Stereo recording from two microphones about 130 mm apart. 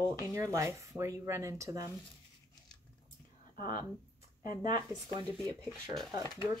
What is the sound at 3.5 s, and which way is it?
Speech, 35° right (ahead or behind).